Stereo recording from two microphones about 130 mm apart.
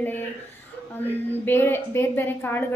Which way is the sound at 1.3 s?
15° left (ahead or behind).